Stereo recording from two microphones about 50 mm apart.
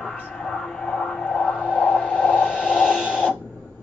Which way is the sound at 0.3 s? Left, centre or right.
Centre.